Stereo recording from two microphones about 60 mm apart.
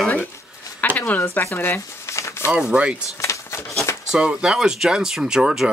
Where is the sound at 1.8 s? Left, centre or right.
Left.